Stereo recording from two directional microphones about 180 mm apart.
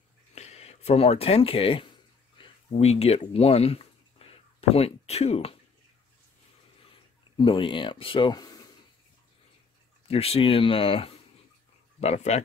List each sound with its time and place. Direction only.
0.3 s speech: 35° left (ahead or behind)
2.3 s a sound: 35° left (ahead or behind)
7.3 s speech: 25° left (ahead or behind)
10.0 s speech: 35° left (ahead or behind)